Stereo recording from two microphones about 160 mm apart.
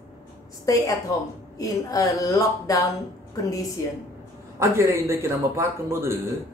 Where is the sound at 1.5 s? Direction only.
20° left (ahead or behind).